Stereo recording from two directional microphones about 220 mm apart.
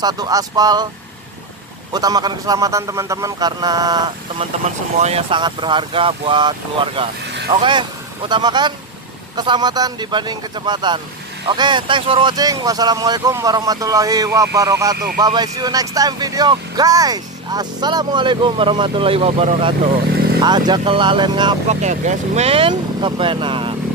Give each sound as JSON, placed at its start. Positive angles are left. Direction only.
{"t": 0.0, "sound": "speech", "side_deg": -15}
{"t": 1.9, "sound": "speech", "side_deg": -15}
{"t": 4.9, "sound": "speech", "side_deg": -30}
{"t": 21.8, "sound": "speech", "side_deg": -30}